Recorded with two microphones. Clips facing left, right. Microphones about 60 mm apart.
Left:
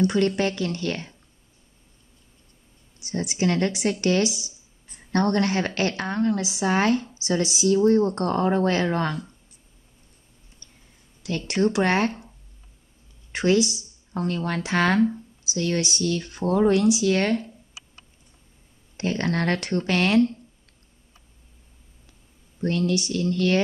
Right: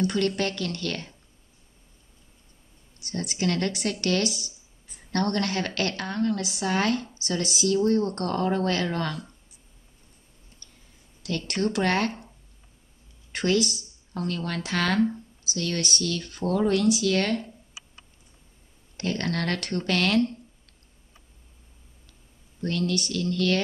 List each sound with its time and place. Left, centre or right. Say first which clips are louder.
0.0 s a woman's voice: left 4 dB; centre
3.0 s a woman's voice: left 4 dB; centre
11.2 s a woman's voice: left 4 dB; centre
13.3 s a woman's voice: left 4 dB; centre
18.9 s a woman's voice: left 3 dB; left
22.6 s a woman's voice: left 3 dB; left